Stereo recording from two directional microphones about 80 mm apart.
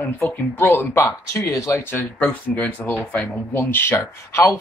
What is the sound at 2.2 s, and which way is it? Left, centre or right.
Speech, centre.